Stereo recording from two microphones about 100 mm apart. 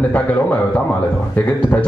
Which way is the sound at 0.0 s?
15° left (ahead or behind).